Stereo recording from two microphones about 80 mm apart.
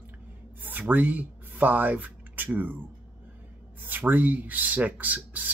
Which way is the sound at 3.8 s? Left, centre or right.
Right.